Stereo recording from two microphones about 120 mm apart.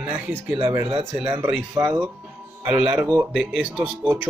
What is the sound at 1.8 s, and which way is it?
Speech, 25° right (ahead or behind).